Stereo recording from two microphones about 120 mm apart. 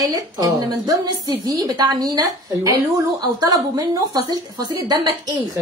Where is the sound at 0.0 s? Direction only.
30° right (ahead or behind).